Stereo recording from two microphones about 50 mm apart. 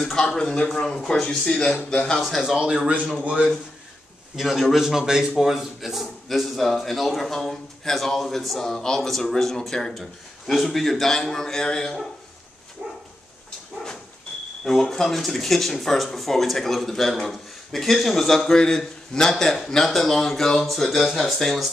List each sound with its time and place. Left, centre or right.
0.0 s speech: centre
1.4 s a man's voice: centre
2.1 s speech: centre
2.4 s a man's voice: centre
4.4 s a man's voice: centre
14.6 s speech: centre